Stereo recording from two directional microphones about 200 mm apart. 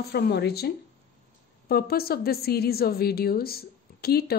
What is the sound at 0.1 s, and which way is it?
A woman's voice, 55° left (ahead or behind).